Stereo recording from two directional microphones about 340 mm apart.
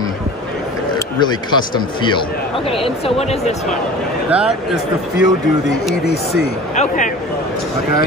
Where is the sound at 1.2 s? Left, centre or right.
Centre.